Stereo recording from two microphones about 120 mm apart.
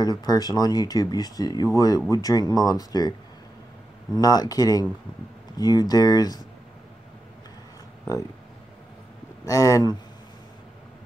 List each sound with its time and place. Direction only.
0.0 s speech: 35° left (ahead or behind)
9.5 s speech: 30° left (ahead or behind)